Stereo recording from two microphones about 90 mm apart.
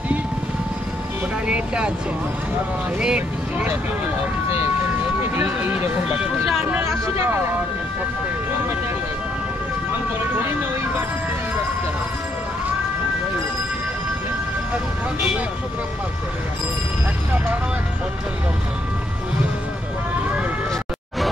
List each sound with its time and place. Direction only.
3.0 s speech: 10° right (ahead or behind)
5.2 s speech: 25° right (ahead or behind)